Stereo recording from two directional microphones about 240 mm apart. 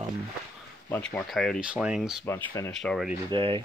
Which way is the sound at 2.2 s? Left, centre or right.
Centre.